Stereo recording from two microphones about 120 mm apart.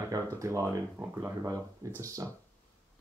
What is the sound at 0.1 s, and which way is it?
Speech, 25° right (ahead or behind).